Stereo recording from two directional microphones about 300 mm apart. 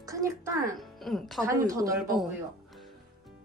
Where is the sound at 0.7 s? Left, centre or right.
Centre.